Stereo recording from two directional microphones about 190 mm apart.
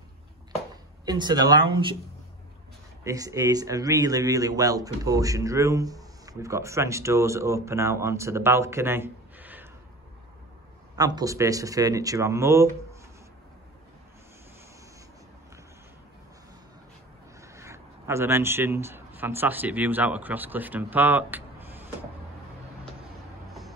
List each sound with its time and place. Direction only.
1.0 s speech: 20° right (ahead or behind)
3.0 s a man's voice: 15° right (ahead or behind)
11.0 s a man's voice: 20° right (ahead or behind)
17.4 s speech: 15° right (ahead or behind)